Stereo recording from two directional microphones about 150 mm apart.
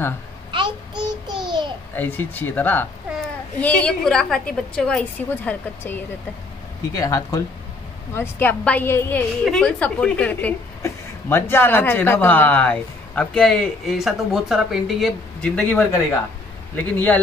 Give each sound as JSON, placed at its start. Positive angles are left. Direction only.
{"t": 0.5, "sound": "child singing", "side_deg": -35}
{"t": 1.5, "sound": "babbling", "side_deg": -30}
{"t": 2.0, "sound": "speech", "side_deg": 10}
{"t": 6.9, "sound": "speech", "side_deg": 20}
{"t": 15.4, "sound": "speech", "side_deg": 10}